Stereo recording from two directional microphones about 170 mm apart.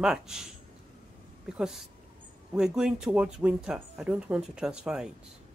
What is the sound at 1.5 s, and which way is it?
Speech, 5° right (ahead or behind).